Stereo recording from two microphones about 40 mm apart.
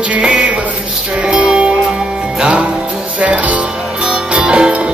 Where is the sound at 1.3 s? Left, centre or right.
Right.